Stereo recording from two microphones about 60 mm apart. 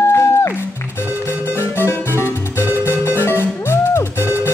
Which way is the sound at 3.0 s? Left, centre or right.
Left.